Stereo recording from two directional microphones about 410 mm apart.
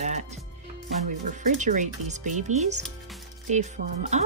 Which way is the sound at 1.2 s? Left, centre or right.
Centre.